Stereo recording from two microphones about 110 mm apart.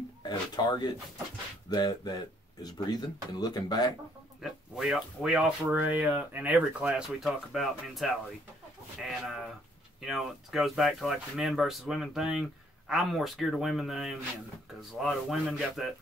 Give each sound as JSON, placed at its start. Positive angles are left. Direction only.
{"t": 0.2, "sound": "speech", "side_deg": 40}
{"t": 4.4, "sound": "speech", "side_deg": -5}
{"t": 6.9, "sound": "speech", "side_deg": -5}
{"t": 10.0, "sound": "speech", "side_deg": 0}